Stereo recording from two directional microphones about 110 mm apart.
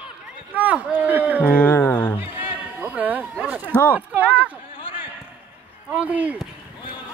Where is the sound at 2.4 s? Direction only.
15° right (ahead or behind).